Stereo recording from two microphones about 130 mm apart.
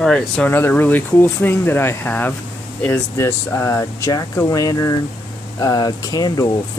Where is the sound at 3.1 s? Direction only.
20° left (ahead or behind).